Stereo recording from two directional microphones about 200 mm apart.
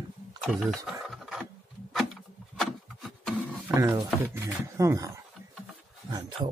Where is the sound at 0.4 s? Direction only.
Centre (ahead or behind).